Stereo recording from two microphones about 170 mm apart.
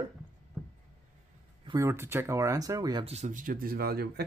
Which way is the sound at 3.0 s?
40° right (ahead or behind).